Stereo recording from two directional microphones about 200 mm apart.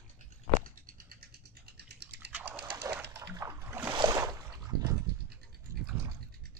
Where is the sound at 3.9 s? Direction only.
20° right (ahead or behind).